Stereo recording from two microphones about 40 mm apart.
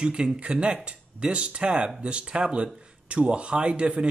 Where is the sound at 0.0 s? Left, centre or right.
Right.